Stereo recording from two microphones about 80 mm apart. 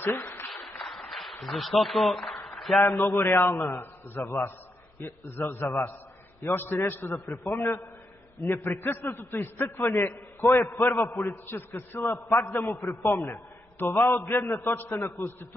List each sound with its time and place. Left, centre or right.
0.0 s applause: left
0.5 s a sound: centre
2.8 s a man's voice: left
8.6 s a man's voice: left
11.4 s a man's voice: left
12.6 s a man's voice: left